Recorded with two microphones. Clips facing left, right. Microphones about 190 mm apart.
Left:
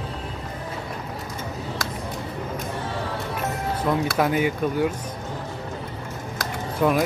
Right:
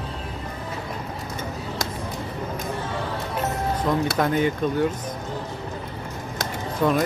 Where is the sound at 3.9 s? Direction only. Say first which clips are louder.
Left 1 dB; 5° left (ahead or behind).